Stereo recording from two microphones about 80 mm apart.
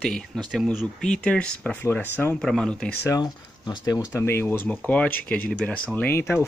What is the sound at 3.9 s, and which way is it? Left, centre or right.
Speech, left.